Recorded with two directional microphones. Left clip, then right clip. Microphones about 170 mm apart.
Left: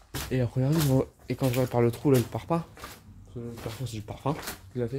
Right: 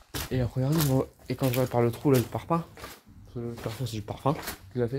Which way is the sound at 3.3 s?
25° right (ahead or behind).